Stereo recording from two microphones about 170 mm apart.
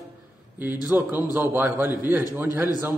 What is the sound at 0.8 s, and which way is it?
A man's voice, 10° right (ahead or behind).